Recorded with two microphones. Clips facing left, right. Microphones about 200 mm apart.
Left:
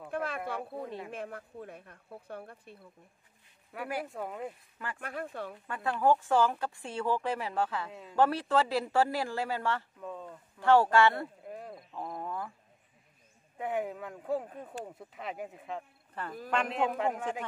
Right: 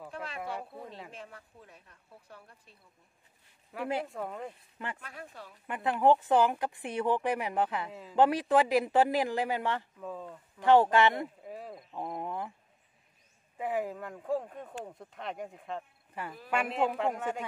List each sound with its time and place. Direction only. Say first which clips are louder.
0.1 s a sound: left 10 dB; 55° left (ahead or behind)
0.5 s speech: left 3 dB; 55° left (ahead or behind)
3.7 s speech: right 3 dB; centre (ahead or behind)
5.0 s speech: left 8 dB; 55° left (ahead or behind)
5.7 s speech: right 2 dB; 20° right (ahead or behind)
7.9 s speech: right 1 dB; centre (ahead or behind)
8.2 s speech: right 2 dB; 15° right (ahead or behind)
9.9 s speech: right 1 dB; centre (ahead or behind)
10.6 s speech: right 1 dB; 20° right (ahead or behind)
11.4 s speech: even; centre (ahead or behind)
11.9 s speech: right 2 dB; 20° right (ahead or behind)
13.6 s speech: right 1 dB; centre (ahead or behind)